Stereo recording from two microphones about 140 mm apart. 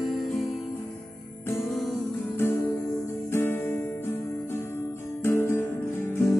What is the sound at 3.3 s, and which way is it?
Music, 15° left (ahead or behind).